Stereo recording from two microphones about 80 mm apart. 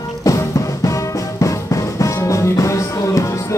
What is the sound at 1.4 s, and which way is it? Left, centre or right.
Music, left.